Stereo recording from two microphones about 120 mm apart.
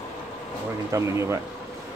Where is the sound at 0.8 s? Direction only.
25° right (ahead or behind).